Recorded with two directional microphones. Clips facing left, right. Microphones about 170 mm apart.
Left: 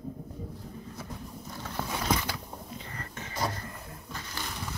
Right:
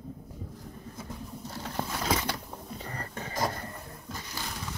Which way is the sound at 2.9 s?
35° right (ahead or behind).